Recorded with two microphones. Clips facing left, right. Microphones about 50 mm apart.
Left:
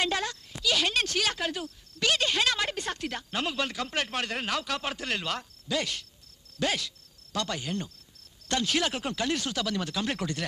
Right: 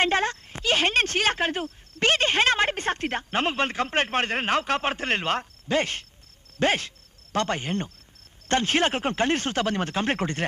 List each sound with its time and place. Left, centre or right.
0.0 s a woman's voice: right